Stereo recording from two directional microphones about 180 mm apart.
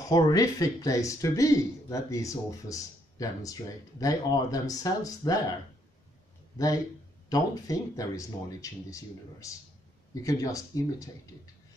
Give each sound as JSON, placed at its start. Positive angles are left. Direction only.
{"t": 0.0, "sound": "speech", "side_deg": 20}
{"t": 7.2, "sound": "speech", "side_deg": 20}